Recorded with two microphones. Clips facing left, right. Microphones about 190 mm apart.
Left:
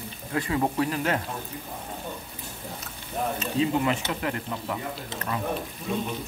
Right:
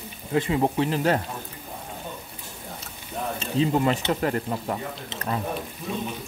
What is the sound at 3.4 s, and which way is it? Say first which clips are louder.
Speech: right 3 dB; 30° right (ahead or behind).